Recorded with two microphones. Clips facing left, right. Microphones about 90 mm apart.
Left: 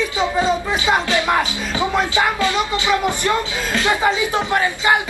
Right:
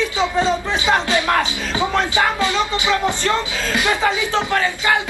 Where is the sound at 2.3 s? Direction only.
20° right (ahead or behind).